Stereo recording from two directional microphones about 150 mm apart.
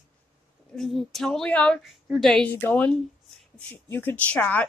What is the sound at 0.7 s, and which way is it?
A woman's voice, centre (ahead or behind).